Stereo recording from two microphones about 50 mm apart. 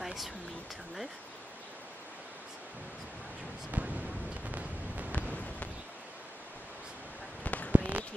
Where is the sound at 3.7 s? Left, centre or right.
Right.